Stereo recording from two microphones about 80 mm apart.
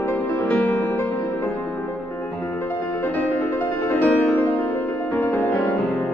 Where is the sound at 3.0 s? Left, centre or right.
Left.